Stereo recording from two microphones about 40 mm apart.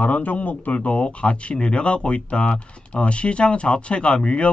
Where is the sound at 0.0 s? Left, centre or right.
Left.